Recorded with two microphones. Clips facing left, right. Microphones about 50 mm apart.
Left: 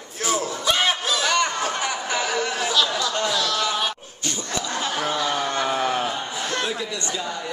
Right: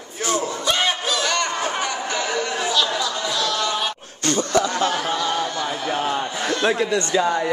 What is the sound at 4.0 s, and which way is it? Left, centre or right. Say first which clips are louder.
Laughter: right 8 dB; right.